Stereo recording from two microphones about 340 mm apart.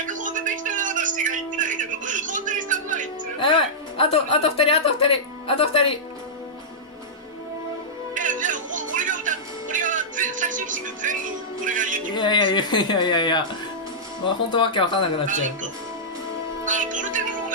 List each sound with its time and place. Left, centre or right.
0.0 s music: right
3.3 s speech: centre
8.1 s music: right
12.2 s speech: centre
16.6 s music: right